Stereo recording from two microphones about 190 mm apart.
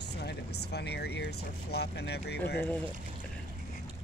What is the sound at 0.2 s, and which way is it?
Speech, 60° left (ahead or behind).